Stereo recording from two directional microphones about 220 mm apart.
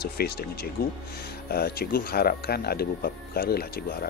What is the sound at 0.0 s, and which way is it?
Speech, 45° left (ahead or behind).